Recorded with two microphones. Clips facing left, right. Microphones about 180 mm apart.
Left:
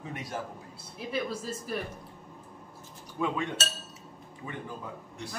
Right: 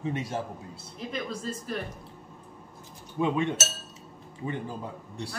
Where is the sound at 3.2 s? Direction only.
20° right (ahead or behind).